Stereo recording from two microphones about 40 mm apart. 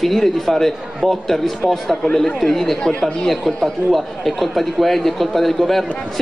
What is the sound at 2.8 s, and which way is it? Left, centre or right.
Speech, left.